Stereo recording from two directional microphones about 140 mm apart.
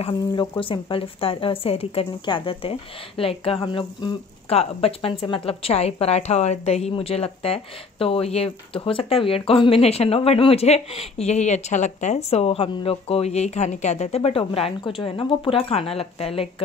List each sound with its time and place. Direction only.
0.1 s a woman's voice: 35° left (ahead or behind)